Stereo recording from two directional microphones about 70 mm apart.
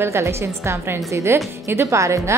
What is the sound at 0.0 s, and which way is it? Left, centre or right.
A woman's voice, right.